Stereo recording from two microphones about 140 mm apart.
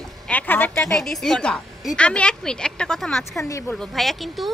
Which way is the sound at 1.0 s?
Centre (ahead or behind).